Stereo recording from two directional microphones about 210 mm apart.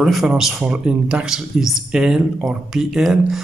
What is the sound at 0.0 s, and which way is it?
A man's voice, centre (ahead or behind).